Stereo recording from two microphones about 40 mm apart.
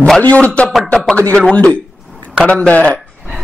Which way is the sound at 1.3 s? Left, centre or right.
Left.